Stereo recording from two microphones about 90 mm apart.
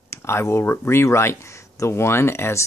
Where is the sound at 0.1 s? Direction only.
30° left (ahead or behind).